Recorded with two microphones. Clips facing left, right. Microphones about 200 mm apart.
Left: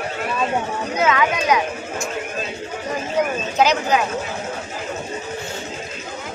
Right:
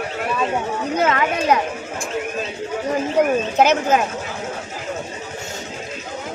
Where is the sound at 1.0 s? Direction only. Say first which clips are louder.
Left 1 dB; 55° right (ahead or behind).